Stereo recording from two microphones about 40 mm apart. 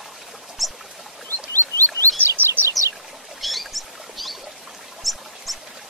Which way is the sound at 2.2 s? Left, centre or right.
Right.